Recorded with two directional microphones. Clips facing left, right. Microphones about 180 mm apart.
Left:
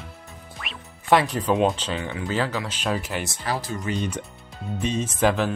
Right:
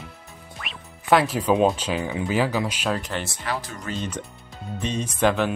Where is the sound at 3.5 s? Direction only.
35° left (ahead or behind).